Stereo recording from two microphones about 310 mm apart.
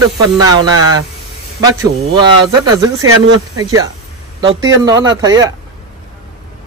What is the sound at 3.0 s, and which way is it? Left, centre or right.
Speech, right.